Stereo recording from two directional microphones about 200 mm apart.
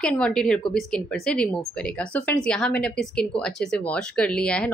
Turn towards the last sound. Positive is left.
turn(degrees=5)  # may be behind; listen again after turning